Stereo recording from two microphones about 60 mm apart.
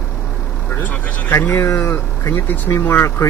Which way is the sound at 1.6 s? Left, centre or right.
Left.